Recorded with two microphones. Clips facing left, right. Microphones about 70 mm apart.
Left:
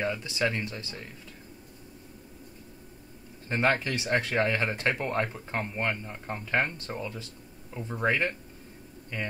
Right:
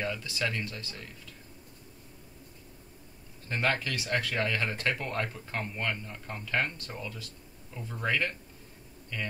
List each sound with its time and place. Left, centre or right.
0.0 s speech: left
3.4 s speech: left